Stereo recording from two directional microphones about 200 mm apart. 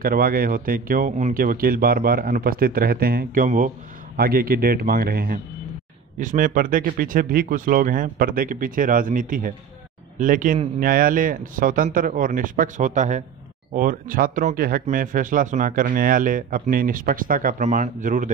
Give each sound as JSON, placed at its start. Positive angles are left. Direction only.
{"t": 0.0, "sound": "speech", "side_deg": -45}